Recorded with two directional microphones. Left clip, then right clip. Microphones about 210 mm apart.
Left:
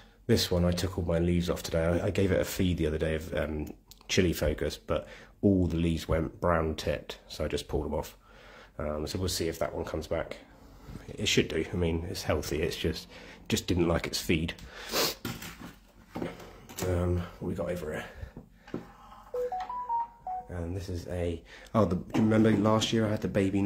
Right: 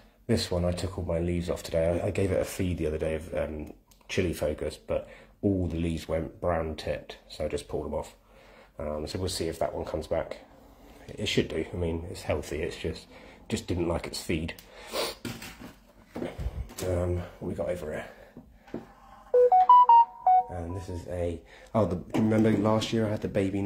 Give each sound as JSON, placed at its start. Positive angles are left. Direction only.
{"t": 0.3, "sound": "speech", "side_deg": 20}
{"t": 9.1, "sound": "speech", "side_deg": 10}
{"t": 16.3, "sound": "speech", "side_deg": 5}
{"t": 20.5, "sound": "speech", "side_deg": 10}